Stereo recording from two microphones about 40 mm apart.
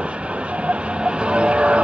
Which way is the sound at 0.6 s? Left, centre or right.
Right.